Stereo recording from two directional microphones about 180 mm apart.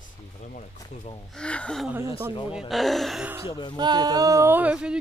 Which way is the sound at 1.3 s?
5° left (ahead or behind).